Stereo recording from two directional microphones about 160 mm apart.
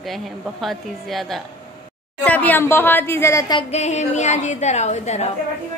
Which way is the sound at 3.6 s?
45° left (ahead or behind).